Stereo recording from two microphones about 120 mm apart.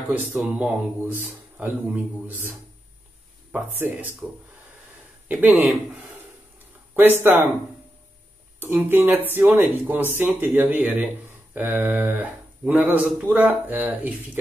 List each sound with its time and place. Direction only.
0.4 s speech: 15° right (ahead or behind)
3.5 s speech: 15° right (ahead or behind)
5.3 s speech: 15° right (ahead or behind)
7.0 s speech: 20° right (ahead or behind)
8.5 s speech: 15° right (ahead or behind)